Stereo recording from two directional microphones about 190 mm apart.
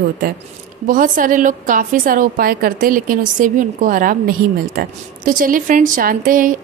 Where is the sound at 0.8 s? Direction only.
45° right (ahead or behind).